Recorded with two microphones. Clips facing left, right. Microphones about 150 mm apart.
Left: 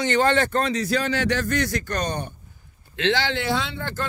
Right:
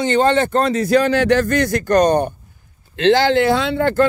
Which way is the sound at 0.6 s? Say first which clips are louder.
Right 8 dB; 55° right (ahead or behind).